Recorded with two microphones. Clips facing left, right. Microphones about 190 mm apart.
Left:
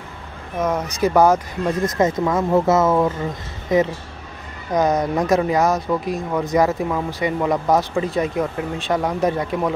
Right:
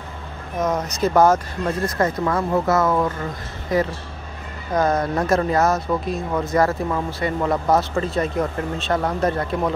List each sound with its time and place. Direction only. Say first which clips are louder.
0.6 s speech: left 1 dB; 10° left (ahead or behind)